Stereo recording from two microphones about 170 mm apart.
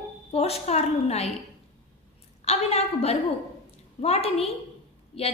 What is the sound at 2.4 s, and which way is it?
A woman's voice, 40° left (ahead or behind).